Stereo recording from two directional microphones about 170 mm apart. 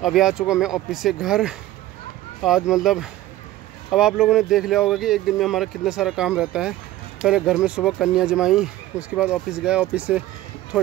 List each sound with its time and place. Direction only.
0.0 s speech: 5° right (ahead or behind)